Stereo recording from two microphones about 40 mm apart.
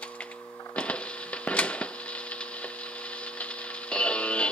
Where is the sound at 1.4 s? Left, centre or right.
Left.